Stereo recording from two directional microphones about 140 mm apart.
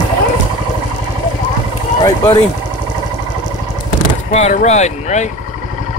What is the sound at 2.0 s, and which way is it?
Speech, 30° left (ahead or behind).